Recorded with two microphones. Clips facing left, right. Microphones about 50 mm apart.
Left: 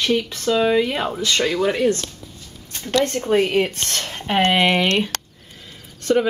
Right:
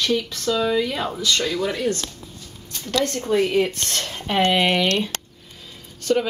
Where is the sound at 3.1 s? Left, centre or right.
Left.